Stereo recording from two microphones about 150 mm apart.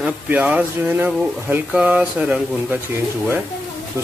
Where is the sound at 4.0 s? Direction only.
20° right (ahead or behind).